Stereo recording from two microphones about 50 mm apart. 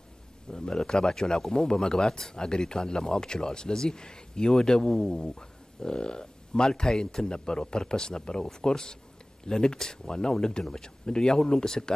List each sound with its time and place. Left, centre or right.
0.5 s a man's voice: centre